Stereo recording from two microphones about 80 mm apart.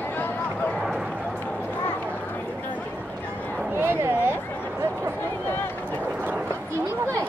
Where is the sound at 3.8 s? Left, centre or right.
Right.